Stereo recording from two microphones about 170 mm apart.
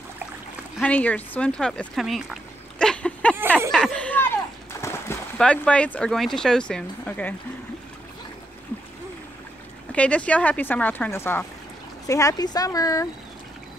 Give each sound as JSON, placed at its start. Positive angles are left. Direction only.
{"t": 0.7, "sound": "speech", "side_deg": 10}
{"t": 3.7, "sound": "a sound", "side_deg": 5}
{"t": 5.4, "sound": "speech", "side_deg": 5}
{"t": 9.9, "sound": "speech", "side_deg": 5}